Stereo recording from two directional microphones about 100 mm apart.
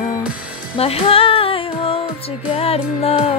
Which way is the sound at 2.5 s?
80° left.